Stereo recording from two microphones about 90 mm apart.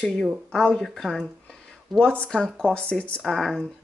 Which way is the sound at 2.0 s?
10° left (ahead or behind).